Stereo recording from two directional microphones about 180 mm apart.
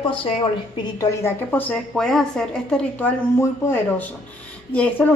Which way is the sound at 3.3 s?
15° left (ahead or behind).